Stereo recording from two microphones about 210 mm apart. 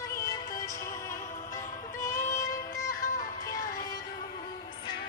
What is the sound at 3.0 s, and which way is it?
Music, 40° left (ahead or behind).